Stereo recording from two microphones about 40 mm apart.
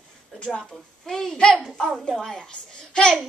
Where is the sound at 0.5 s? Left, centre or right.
Centre.